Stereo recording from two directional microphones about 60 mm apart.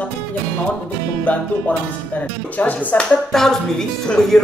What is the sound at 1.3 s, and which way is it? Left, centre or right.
Speech, left.